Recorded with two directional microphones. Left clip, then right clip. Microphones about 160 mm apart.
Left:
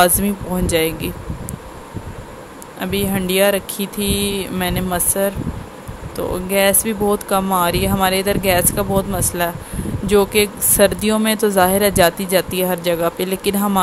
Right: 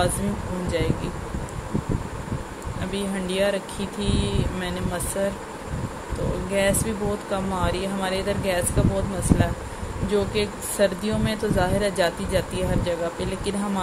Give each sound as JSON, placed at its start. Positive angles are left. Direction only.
{"t": 0.2, "sound": "speech", "side_deg": 40}
{"t": 2.8, "sound": "speech", "side_deg": 35}
{"t": 6.5, "sound": "speech", "side_deg": 35}